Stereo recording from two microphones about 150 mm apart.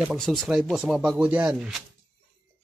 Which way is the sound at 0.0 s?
Centre (ahead or behind).